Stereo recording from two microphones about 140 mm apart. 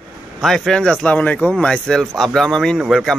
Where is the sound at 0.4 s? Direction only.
5° left (ahead or behind).